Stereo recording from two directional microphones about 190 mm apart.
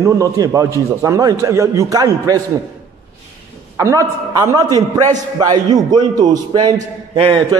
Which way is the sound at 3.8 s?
15° right (ahead or behind).